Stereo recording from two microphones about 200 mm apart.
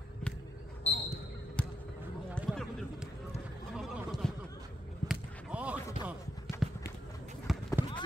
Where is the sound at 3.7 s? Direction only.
Centre (ahead or behind).